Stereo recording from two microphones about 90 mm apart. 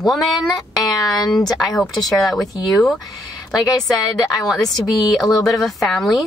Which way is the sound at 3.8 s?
Centre (ahead or behind).